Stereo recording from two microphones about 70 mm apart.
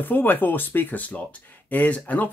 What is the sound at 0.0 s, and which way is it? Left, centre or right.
Speech, left.